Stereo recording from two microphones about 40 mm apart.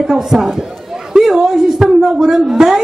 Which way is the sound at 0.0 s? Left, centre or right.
Centre.